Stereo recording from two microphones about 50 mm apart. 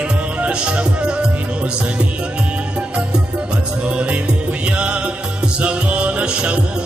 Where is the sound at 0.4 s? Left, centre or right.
Right.